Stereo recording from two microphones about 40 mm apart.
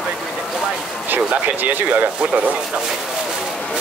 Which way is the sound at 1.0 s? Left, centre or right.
Right.